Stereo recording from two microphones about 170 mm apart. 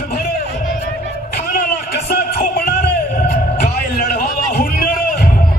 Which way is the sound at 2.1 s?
60° left (ahead or behind).